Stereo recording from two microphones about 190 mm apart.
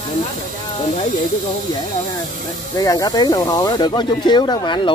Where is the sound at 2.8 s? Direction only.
20° left (ahead or behind).